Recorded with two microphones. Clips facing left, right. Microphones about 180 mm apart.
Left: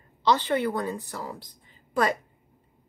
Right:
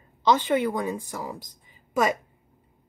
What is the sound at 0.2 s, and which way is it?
A woman's voice, 10° right (ahead or behind).